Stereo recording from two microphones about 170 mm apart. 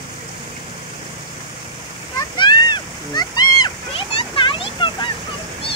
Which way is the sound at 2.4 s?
25° left (ahead or behind).